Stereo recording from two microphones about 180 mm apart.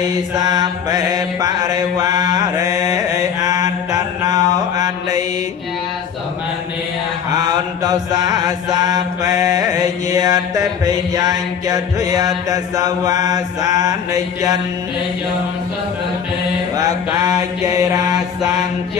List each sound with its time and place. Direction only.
0.1 s mantra: 20° right (ahead or behind)
7.3 s mantra: 20° right (ahead or behind)
16.7 s mantra: 20° right (ahead or behind)